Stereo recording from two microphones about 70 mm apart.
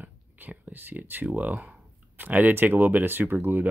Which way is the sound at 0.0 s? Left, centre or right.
Right.